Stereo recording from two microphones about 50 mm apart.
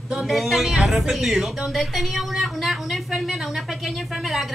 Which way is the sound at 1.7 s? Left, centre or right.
Centre.